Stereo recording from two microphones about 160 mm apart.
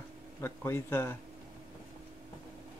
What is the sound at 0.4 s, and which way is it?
Speech, 15° left (ahead or behind).